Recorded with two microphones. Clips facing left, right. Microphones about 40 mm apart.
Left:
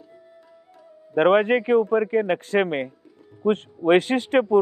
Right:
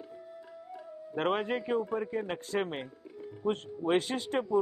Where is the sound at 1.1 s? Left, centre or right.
Left.